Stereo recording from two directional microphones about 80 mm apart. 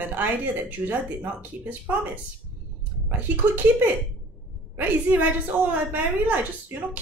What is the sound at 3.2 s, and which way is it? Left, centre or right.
A woman's voice, right.